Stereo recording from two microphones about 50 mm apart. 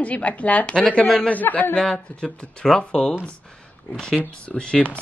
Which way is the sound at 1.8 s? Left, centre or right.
Centre.